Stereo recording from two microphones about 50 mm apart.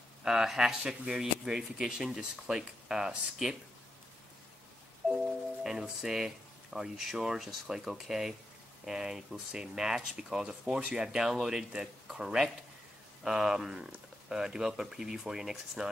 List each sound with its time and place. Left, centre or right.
0.2 s speech: centre
5.0 s music: centre
5.6 s speech: centre
11.1 s speech: centre
15.8 s speech: right